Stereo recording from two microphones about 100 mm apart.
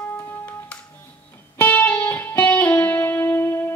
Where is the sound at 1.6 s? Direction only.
15° left (ahead or behind).